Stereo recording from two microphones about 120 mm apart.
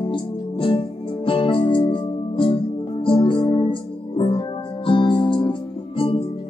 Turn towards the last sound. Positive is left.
turn(degrees=50)  # may be behind; listen again after turning